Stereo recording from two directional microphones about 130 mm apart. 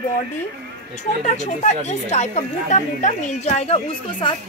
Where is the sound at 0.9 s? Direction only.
65° left (ahead or behind).